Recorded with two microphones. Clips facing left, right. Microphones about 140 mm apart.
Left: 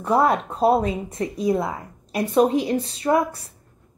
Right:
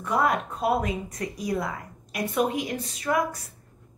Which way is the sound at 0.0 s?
30° left (ahead or behind).